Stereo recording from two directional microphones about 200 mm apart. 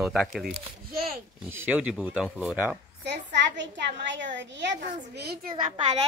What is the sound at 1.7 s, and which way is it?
Speech, 5° right (ahead or behind).